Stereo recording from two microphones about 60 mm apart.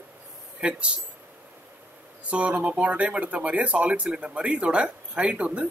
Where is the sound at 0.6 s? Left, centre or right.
Centre.